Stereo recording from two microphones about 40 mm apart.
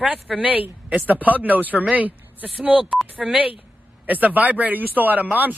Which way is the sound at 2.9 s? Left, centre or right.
Centre.